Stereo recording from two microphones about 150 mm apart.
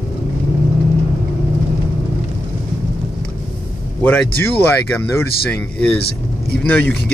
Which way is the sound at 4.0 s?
15° left (ahead or behind).